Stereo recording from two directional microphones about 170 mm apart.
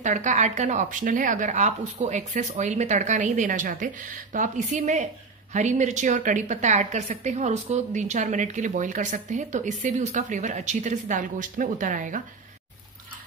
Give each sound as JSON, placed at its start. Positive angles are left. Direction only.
{"t": 0.0, "sound": "a woman's voice", "side_deg": -45}